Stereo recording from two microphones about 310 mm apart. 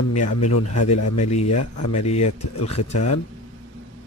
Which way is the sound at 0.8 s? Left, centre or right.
Left.